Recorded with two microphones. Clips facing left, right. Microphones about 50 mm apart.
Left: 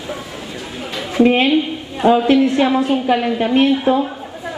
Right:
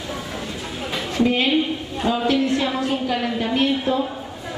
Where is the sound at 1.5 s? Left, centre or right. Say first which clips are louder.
Left 4 dB; centre.